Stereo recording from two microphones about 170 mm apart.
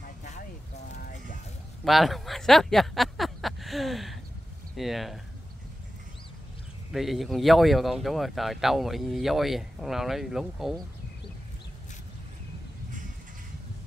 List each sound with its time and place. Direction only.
0.2 s vehicle: 45° left (ahead or behind)
1.9 s speech: centre (ahead or behind)
6.9 s speech: centre (ahead or behind)